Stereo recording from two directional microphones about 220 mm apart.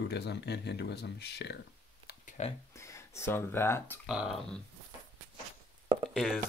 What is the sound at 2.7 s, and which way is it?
Speech, 15° left (ahead or behind).